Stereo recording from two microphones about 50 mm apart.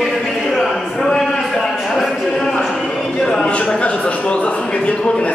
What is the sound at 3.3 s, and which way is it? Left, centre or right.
A man's voice, centre.